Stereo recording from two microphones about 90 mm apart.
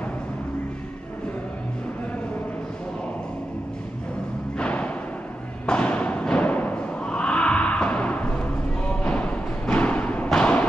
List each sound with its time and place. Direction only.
4.6 s thump: 15° left (ahead or behind)
8.8 s music: 15° left (ahead or behind)